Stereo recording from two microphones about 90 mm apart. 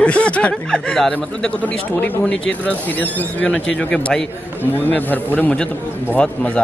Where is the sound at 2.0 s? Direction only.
15° left (ahead or behind).